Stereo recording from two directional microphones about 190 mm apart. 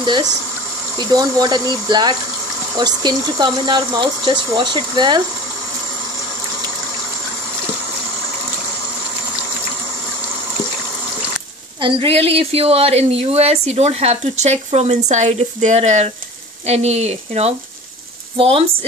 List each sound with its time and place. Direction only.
0.0 s speech: 25° right (ahead or behind)
11.8 s speech: 30° right (ahead or behind)